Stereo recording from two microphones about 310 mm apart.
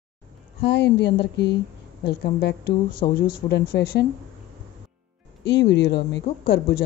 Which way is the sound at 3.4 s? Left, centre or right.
Left.